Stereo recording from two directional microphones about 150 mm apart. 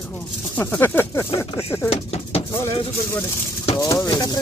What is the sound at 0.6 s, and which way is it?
Speech, 15° left (ahead or behind).